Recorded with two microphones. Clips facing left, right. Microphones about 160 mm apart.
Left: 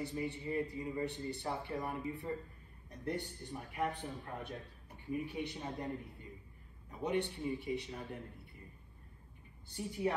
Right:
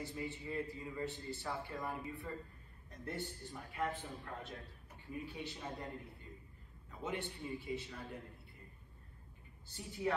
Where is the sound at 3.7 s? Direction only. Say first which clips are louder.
Left 2 dB; 15° left (ahead or behind).